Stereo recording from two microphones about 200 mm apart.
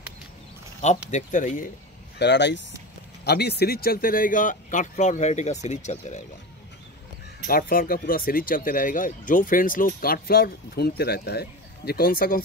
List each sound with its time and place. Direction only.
0.7 s speech: 35° left (ahead or behind)
2.1 s speech: 60° left (ahead or behind); by 6.2 s 35° left (ahead or behind)
7.4 s speech: 45° left (ahead or behind)